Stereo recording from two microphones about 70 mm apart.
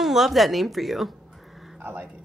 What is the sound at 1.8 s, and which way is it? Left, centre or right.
Speech, right.